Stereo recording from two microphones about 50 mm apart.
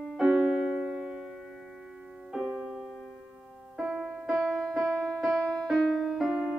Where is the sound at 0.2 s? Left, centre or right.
Centre.